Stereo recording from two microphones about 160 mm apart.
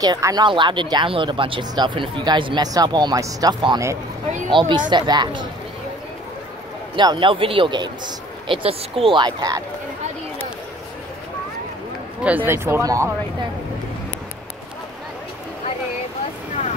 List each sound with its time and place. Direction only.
0.0 s speech: 25° right (ahead or behind)
7.0 s speech: 30° right (ahead or behind)
12.4 s speech: 15° right (ahead or behind)